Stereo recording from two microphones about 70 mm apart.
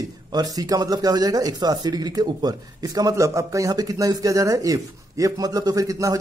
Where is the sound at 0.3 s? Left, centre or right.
Right.